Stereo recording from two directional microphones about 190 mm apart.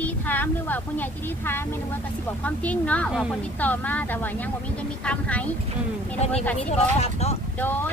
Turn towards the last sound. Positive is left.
turn(degrees=10)  # may be behind; listen again after turning